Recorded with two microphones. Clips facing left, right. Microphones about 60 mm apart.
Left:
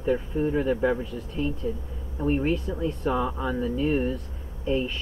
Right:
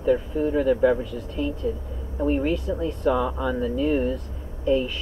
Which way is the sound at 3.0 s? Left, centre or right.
Centre.